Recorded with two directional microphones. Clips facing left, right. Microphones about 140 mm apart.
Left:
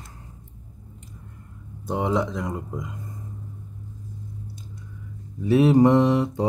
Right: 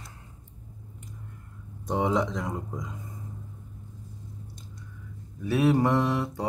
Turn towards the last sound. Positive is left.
turn(degrees=20)  # may be behind; listen again after turning